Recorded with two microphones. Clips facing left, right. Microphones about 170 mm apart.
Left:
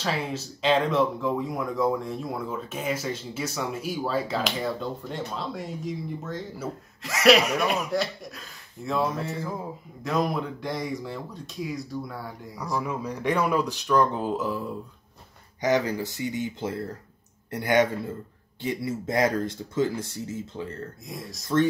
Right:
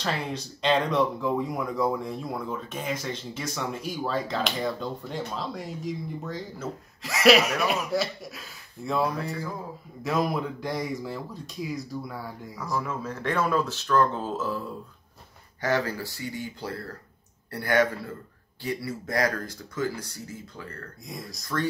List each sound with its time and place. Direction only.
0.0 s speech: 5° left (ahead or behind)
12.8 s speech: 15° left (ahead or behind)
15.6 s speech: 20° left (ahead or behind)
21.1 s speech: centre (ahead or behind)